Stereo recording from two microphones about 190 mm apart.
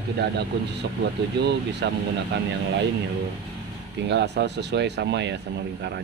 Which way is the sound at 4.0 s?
65° right (ahead or behind).